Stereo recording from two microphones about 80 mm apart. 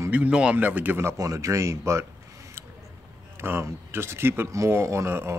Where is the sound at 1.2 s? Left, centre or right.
Right.